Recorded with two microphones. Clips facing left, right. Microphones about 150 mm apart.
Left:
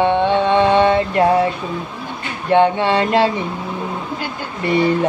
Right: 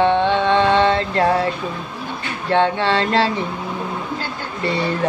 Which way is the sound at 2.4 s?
15° left (ahead or behind).